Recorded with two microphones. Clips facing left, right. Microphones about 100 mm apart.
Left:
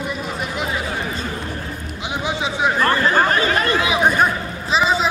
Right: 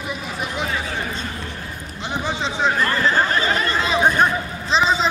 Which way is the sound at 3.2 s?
55° left (ahead or behind).